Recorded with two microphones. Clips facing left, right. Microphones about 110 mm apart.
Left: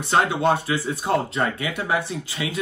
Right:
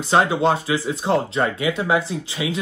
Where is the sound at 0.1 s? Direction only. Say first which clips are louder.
Right 2 dB; 25° right (ahead or behind).